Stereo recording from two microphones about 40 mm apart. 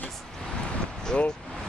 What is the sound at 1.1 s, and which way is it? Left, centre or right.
Speech, left.